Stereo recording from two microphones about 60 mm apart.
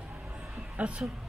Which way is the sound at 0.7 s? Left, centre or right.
Right.